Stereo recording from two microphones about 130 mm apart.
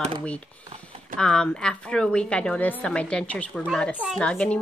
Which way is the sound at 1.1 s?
5° left (ahead or behind).